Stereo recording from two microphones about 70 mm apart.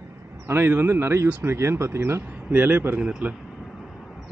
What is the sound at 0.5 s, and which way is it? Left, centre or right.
Speech, right.